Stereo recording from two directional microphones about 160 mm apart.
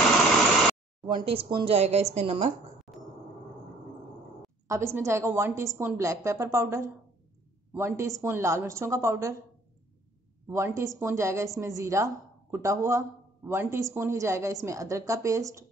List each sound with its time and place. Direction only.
1.0 s speech: 30° right (ahead or behind)
4.6 s a woman's voice: 15° right (ahead or behind)
10.5 s a woman's voice: 20° right (ahead or behind)